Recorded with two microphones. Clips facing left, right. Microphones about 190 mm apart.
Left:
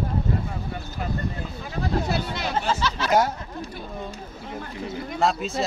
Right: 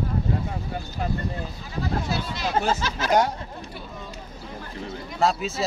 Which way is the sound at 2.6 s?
45° right (ahead or behind).